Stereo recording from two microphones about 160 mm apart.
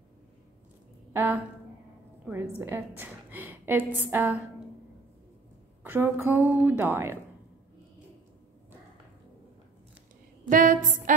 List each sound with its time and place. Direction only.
1.1 s a woman's voice: 15° right (ahead or behind)
5.9 s a woman's voice: 15° right (ahead or behind)
10.5 s a sound: 55° right (ahead or behind)